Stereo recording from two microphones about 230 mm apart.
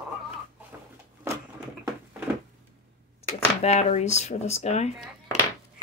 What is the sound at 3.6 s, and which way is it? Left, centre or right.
Speech, left.